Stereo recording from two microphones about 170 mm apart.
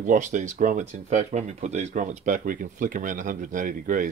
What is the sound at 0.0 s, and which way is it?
Speech, 45° right (ahead or behind).